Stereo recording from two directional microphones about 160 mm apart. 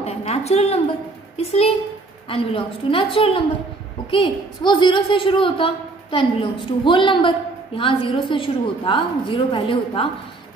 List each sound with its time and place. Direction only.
0.0 s a woman's voice: 40° left (ahead or behind)